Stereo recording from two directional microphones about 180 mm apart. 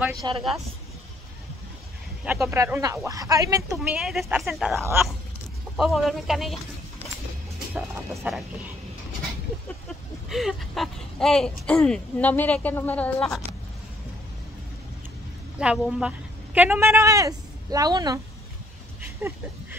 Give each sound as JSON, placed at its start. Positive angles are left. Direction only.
{"t": 0.2, "sound": "speech", "side_deg": -25}
{"t": 2.2, "sound": "speech", "side_deg": -10}
{"t": 3.9, "sound": "speech", "side_deg": 0}
{"t": 4.7, "sound": "speech", "side_deg": -15}
{"t": 5.8, "sound": "speech", "side_deg": 0}
{"t": 9.8, "sound": "speech", "side_deg": 0}
{"t": 15.6, "sound": "a woman's voice", "side_deg": -5}
{"t": 18.9, "sound": "a sound", "side_deg": -10}